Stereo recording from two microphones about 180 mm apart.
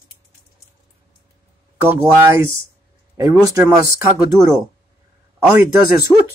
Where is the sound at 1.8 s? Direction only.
15° right (ahead or behind).